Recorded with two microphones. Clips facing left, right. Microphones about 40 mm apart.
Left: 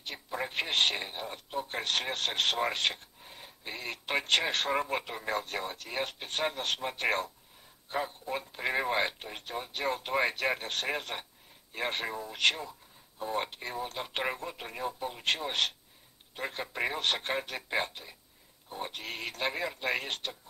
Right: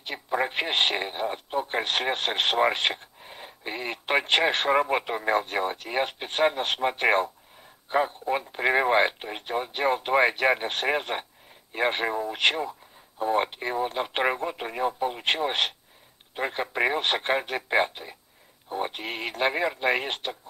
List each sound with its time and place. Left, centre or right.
0.0 s speech: right